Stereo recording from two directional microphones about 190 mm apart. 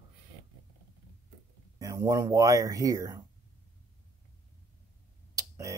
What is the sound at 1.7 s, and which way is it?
Speech, 20° right (ahead or behind).